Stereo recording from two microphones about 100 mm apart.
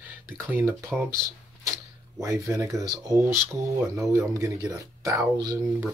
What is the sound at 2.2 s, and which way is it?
Speech, 30° right (ahead or behind).